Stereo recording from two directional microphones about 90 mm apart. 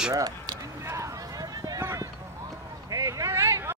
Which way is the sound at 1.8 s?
30° right (ahead or behind).